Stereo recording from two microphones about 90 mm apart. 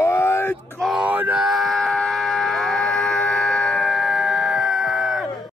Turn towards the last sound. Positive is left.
turn(degrees=0)  # may be behind; listen again after turning